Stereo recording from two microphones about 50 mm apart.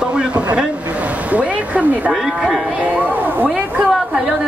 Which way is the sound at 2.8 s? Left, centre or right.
Right.